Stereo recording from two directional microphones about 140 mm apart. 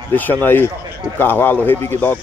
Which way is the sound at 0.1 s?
15° left (ahead or behind).